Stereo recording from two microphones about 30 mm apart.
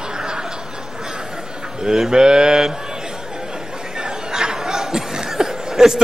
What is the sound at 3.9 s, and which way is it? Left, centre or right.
Chatter, right.